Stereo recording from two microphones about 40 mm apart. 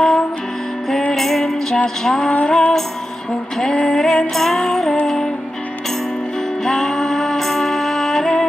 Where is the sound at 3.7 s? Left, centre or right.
Centre.